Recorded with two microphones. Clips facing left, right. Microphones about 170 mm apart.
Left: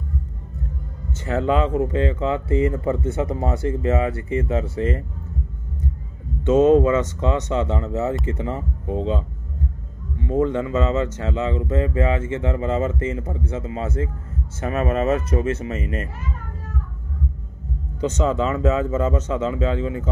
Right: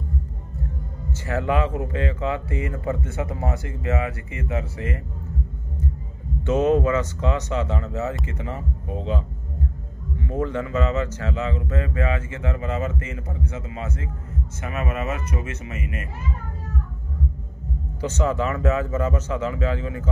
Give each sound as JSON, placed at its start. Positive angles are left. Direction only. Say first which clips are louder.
{"t": 1.1, "sound": "a man's voice", "louder": "left 3 dB", "side_deg": 25}
{"t": 6.4, "sound": "a man's voice", "louder": "left 5 dB", "side_deg": 25}
{"t": 18.0, "sound": "a man's voice", "louder": "left 3 dB", "side_deg": 20}